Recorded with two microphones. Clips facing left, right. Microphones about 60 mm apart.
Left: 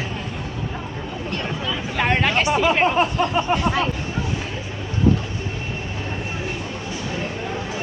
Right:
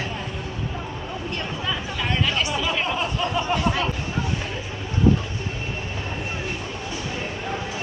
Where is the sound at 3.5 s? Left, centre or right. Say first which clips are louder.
Left 3 dB; left.